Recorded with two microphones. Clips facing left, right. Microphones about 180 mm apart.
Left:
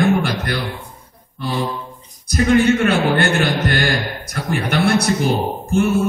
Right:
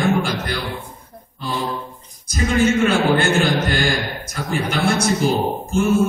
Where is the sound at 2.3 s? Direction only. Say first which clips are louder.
Left 3 dB; 60° left (ahead or behind).